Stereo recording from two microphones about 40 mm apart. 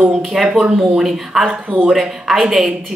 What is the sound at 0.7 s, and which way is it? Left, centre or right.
Speech, centre.